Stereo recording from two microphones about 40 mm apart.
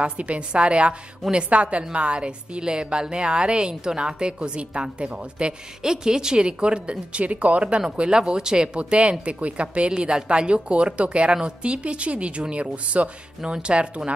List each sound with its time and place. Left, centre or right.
0.0 s a woman's voice: right
8.2 s a woman's voice: centre
9.2 s a woman's voice: right